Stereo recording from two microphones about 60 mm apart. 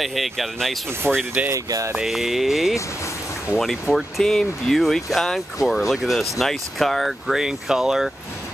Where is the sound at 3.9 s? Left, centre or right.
Centre.